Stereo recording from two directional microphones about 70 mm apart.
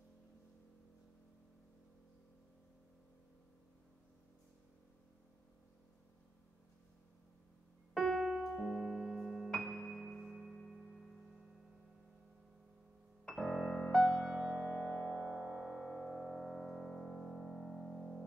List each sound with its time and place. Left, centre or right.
7.9 s piano: centre
8.5 s keyboard: centre
9.9 s music: centre
13.3 s music: centre
14.3 s music: centre
15.7 s music: centre